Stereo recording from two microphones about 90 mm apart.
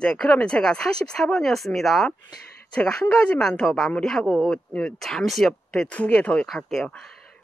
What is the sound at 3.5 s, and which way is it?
Speech, 5° left (ahead or behind).